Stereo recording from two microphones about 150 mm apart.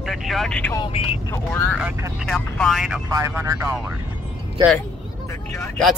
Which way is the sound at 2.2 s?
5° left (ahead or behind).